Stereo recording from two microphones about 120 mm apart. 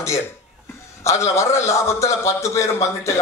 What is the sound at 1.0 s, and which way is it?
A man's voice, 25° left (ahead or behind).